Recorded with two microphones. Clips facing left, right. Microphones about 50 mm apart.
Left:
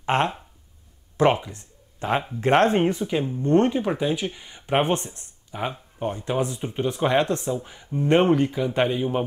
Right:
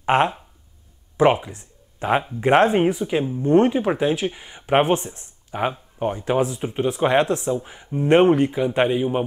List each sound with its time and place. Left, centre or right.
0.0 s speech: centre